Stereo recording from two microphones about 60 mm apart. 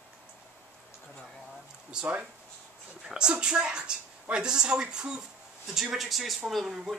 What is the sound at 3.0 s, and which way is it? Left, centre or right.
A woman's voice, centre.